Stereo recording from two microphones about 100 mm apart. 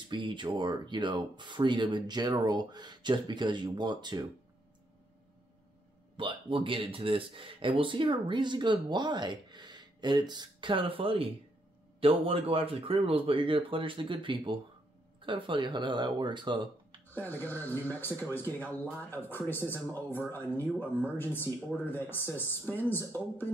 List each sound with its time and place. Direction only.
0.1 s speech: 55° right (ahead or behind)
6.1 s speech: 60° right (ahead or behind)
17.1 s speech: 20° left (ahead or behind)